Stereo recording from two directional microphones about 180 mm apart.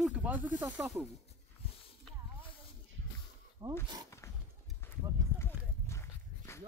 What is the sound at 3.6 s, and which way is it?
Speech, 15° right (ahead or behind).